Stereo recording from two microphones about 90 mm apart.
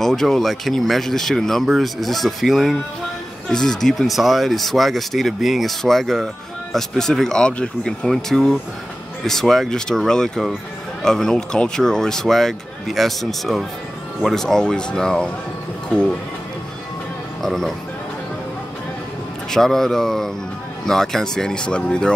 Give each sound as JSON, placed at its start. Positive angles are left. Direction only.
{"t": 0.0, "sound": "speech", "side_deg": 5}
{"t": 17.4, "sound": "speech", "side_deg": 5}
{"t": 19.5, "sound": "speech", "side_deg": 5}